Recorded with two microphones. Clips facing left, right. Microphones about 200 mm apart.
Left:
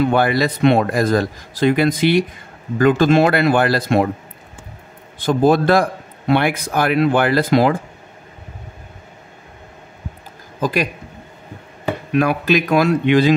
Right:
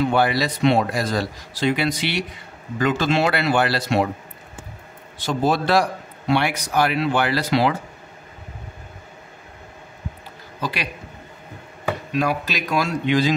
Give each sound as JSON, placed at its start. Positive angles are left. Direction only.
{"t": 0.0, "sound": "speech", "side_deg": 50}
{"t": 5.2, "sound": "speech", "side_deg": 55}
{"t": 10.6, "sound": "a man's voice", "side_deg": 45}
{"t": 12.1, "sound": "speech", "side_deg": 60}